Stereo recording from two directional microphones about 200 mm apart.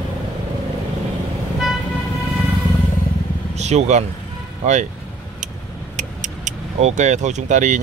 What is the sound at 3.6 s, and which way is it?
Speech, 35° right (ahead or behind).